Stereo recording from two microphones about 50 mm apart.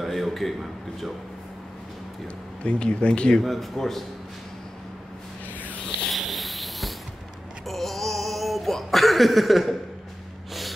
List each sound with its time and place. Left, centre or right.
0.0 s a man's voice: centre
2.6 s speech: left
3.4 s a man's voice: centre
6.0 s a sound: centre